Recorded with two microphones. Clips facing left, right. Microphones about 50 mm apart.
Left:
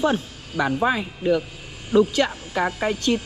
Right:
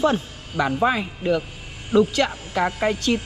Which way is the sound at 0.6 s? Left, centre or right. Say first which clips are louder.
Even; centre.